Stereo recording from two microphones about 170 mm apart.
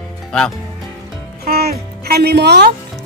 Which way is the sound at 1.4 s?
65° right (ahead or behind).